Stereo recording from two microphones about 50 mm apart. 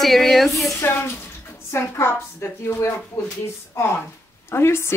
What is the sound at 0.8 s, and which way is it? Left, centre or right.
Speech, left.